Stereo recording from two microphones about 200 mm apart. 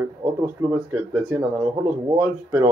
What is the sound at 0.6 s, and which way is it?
Speech, 10° right (ahead or behind).